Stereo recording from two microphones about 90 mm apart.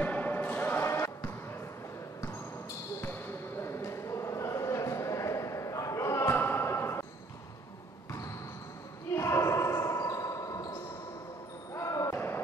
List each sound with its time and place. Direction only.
0.0 s basketball bounce: 20° left (ahead or behind)
3.0 s basketball bounce: 25° left (ahead or behind)
9.1 s basketball bounce: 30° left (ahead or behind)